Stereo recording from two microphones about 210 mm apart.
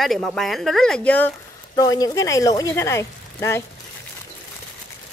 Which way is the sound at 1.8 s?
15° left (ahead or behind).